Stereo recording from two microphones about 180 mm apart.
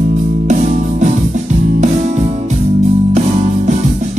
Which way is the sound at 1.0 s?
45° right (ahead or behind).